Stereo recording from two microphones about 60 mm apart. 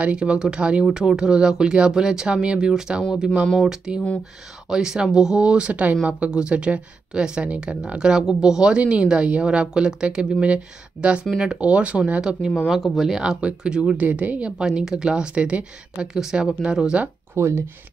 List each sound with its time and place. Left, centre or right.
0.0 s a woman's voice: centre
12.8 s speech: centre
13.1 s speech: centre
14.6 s a woman's voice: centre
17.4 s speech: right